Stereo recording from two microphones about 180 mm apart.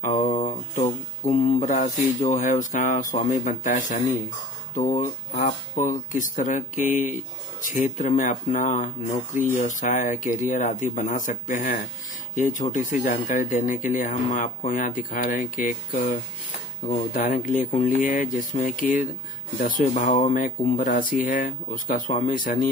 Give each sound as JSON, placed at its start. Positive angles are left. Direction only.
{"t": 0.0, "sound": "a sound", "side_deg": 40}
{"t": 0.7, "sound": "speech", "side_deg": 40}
{"t": 17.1, "sound": "speech", "side_deg": 50}